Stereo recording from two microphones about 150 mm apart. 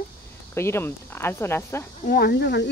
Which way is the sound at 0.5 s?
15° left (ahead or behind).